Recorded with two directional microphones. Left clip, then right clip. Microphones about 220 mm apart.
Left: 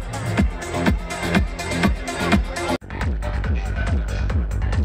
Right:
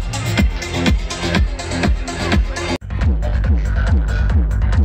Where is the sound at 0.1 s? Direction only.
40° left (ahead or behind).